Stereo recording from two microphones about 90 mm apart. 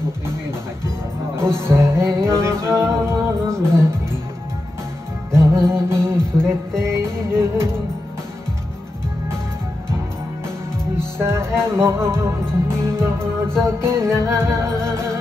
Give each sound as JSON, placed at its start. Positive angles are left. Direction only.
{"t": 0.8, "sound": "music", "side_deg": -30}
{"t": 5.3, "sound": "music", "side_deg": -30}
{"t": 11.1, "sound": "music", "side_deg": -30}